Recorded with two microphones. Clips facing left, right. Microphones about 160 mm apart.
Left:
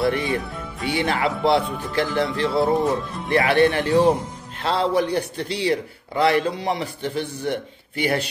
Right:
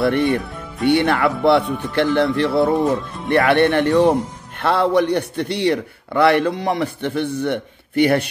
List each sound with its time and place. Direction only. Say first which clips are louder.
0.1 s a man's voice: right 6 dB; 60° right (ahead or behind)